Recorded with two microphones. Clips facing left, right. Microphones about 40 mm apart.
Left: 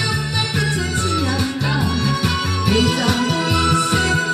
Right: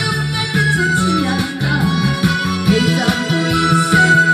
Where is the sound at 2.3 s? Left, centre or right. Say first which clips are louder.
Right 4 dB; right.